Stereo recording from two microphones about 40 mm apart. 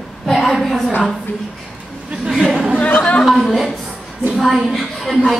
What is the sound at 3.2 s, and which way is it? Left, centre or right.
Speech, centre.